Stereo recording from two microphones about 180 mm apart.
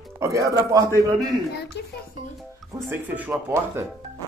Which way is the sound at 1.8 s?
70° left (ahead or behind).